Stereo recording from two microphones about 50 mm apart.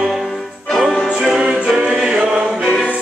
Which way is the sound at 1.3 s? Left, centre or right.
Centre.